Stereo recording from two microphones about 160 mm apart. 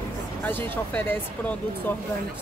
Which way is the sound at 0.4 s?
15° left (ahead or behind).